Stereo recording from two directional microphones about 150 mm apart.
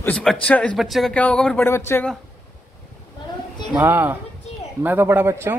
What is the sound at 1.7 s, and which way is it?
Speech, 15° left (ahead or behind).